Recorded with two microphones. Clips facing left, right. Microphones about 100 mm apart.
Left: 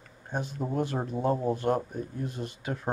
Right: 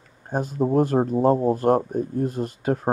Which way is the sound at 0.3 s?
45° right (ahead or behind).